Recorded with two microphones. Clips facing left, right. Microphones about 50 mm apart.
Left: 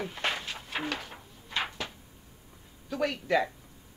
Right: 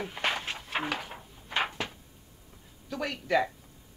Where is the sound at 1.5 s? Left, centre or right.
Right.